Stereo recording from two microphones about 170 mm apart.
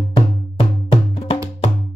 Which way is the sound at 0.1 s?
35° left (ahead or behind).